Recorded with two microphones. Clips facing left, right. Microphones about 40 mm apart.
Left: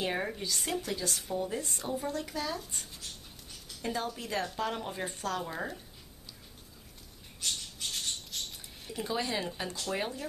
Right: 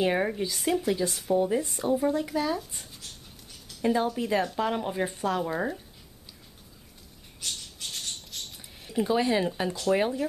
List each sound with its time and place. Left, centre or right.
0.0 s speech: centre
3.8 s speech: centre
7.3 s rodents: centre
8.9 s speech: centre